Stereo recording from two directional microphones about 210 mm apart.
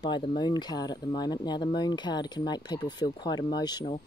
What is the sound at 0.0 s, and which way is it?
Speech, 20° left (ahead or behind).